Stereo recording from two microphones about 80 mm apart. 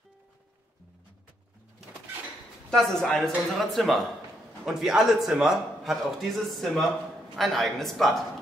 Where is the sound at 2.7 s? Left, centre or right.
Centre.